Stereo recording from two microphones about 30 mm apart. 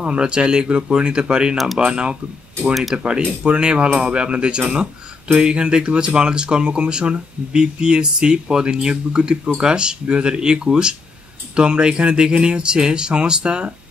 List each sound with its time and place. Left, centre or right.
0.0 s speech: right
2.7 s speech: centre
3.4 s speech: right